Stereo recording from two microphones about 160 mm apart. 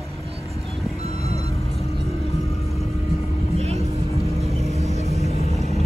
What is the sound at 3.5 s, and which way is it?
Vehicle, 40° right (ahead or behind).